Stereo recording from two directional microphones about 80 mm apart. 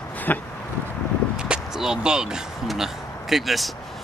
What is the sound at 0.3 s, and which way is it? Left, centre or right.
Speech, left.